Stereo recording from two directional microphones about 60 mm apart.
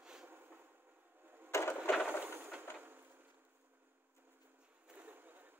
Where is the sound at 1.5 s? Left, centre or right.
Left.